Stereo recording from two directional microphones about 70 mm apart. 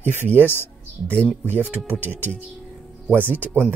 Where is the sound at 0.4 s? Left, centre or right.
Left.